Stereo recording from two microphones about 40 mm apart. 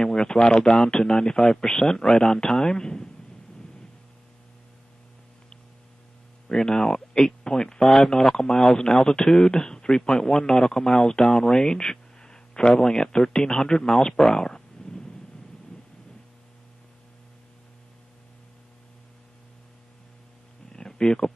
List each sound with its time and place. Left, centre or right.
0.1 s a man's voice: centre
6.5 s a man's voice: centre
7.8 s a man's voice: centre
20.7 s a sound: centre